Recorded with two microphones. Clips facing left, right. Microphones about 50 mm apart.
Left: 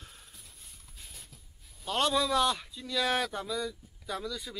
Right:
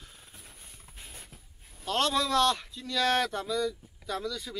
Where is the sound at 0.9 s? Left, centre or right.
Right.